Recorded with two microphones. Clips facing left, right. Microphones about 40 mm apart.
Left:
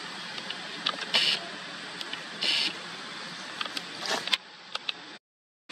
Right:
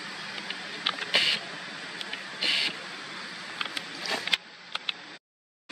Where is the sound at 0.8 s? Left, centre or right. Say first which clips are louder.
Right 1 dB; right.